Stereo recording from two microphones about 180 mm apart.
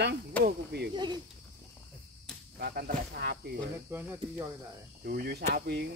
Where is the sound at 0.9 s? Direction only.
25° right (ahead or behind).